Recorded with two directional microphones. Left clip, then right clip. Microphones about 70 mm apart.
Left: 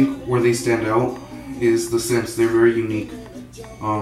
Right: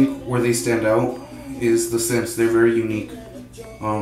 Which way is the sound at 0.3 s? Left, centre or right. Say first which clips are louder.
Left 2 dB; centre.